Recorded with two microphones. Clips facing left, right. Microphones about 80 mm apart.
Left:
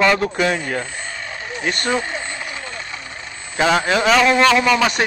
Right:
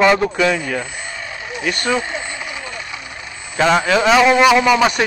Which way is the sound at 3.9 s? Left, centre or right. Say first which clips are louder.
Right 3 dB; centre.